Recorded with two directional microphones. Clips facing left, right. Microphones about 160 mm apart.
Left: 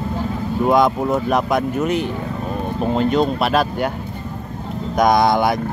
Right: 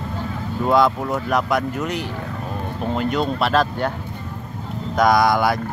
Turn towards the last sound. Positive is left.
turn(degrees=20)  # may be behind; listen again after turning